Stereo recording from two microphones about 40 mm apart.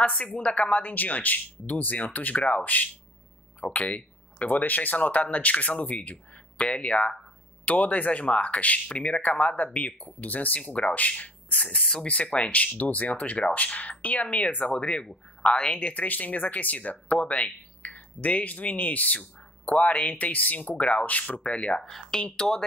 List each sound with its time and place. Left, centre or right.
0.0 s a woman's voice: left
10.6 s speech: left
14.8 s speech: left
15.9 s speech: left
22.4 s speech: centre